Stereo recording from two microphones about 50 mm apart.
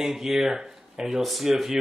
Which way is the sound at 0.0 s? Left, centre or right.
Centre.